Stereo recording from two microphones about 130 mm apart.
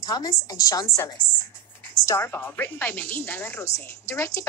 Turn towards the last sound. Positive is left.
turn(degrees=25)  # may be behind; listen again after turning